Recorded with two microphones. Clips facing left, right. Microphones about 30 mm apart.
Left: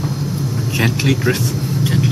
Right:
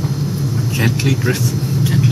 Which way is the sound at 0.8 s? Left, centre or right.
Centre.